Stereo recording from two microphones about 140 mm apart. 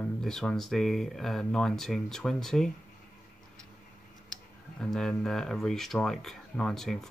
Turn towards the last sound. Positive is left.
turn(degrees=5)  # may be behind; listen again after turning